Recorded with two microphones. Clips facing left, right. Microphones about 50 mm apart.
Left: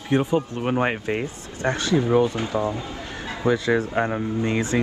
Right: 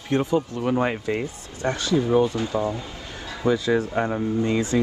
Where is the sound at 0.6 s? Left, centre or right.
Left.